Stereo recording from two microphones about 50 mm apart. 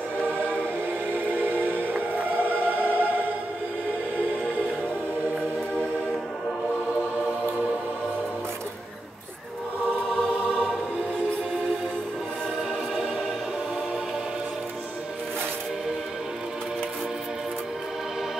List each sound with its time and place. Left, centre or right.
1.1 s music: right